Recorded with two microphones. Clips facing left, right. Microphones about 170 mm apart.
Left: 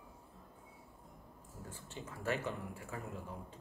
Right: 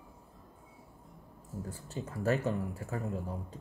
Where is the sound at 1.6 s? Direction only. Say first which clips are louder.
Right 5 dB; 40° right (ahead or behind).